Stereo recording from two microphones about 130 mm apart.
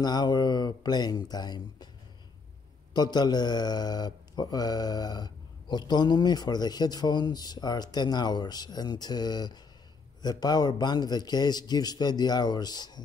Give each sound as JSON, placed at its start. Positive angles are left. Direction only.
{"t": 0.0, "sound": "speech", "side_deg": 30}
{"t": 2.9, "sound": "speech", "side_deg": 35}